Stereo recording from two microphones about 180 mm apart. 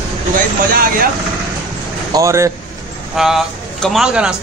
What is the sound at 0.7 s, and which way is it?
Speech, 55° right (ahead or behind).